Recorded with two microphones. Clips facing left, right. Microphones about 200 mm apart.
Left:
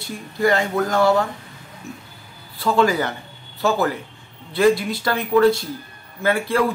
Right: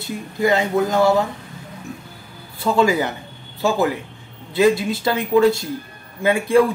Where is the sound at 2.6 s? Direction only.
15° right (ahead or behind).